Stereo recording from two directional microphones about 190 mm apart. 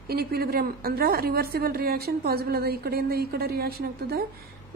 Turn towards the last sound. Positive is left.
turn(degrees=-55)  # may be behind; listen again after turning